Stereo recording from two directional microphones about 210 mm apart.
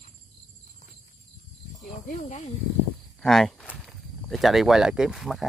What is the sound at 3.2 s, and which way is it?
Walk, centre (ahead or behind).